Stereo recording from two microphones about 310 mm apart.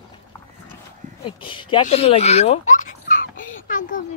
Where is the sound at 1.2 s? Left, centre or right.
Centre.